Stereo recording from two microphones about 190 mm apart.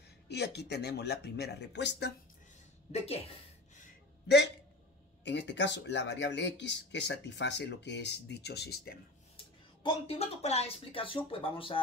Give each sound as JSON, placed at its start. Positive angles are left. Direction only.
{"t": 0.3, "sound": "speech", "side_deg": 60}
{"t": 2.9, "sound": "a sound", "side_deg": 30}
{"t": 5.2, "sound": "speech", "side_deg": 65}
{"t": 9.4, "sound": "speech", "side_deg": 30}